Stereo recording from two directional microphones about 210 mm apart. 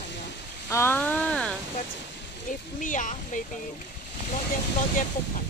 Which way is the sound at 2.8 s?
40° left (ahead or behind).